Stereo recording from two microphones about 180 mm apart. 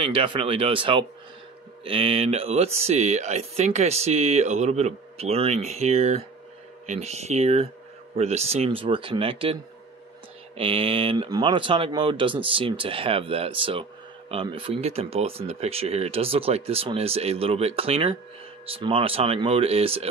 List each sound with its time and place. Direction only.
0.0 s speech: 30° right (ahead or behind)
10.6 s speech: 30° right (ahead or behind)